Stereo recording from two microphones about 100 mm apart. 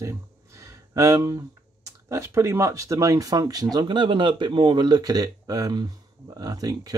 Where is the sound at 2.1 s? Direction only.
30° right (ahead or behind).